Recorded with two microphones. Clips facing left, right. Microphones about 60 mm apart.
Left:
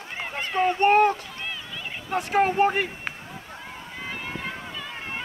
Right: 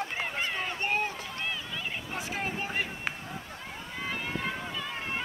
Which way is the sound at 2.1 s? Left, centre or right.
Left.